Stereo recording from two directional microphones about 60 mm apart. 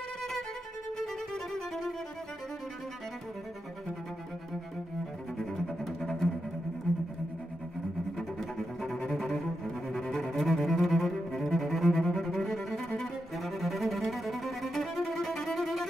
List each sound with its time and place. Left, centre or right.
0.9 s music: centre
5.4 s cello: centre
8.2 s double bass: centre
9.8 s cello: centre